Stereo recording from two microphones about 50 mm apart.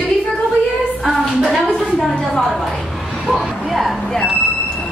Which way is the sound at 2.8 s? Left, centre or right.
Centre.